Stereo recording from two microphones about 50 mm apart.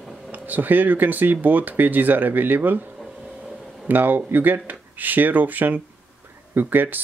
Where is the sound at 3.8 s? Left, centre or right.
Right.